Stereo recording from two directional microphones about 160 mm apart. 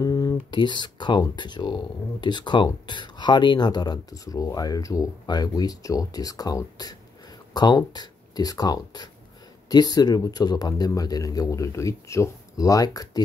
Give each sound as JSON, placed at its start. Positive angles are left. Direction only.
{"t": 0.0, "sound": "speech", "side_deg": 20}